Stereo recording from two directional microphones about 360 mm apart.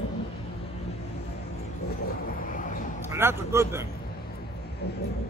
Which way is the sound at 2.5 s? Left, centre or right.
Left.